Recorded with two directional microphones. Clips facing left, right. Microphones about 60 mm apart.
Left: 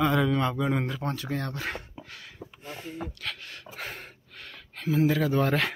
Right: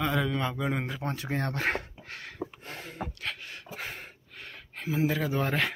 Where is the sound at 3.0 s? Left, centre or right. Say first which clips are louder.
Even; right.